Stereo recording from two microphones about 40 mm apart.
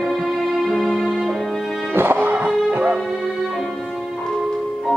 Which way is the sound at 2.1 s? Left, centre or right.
Right.